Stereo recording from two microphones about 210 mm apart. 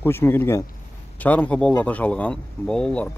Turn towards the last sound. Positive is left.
turn(degrees=5)  # may be behind; listen again after turning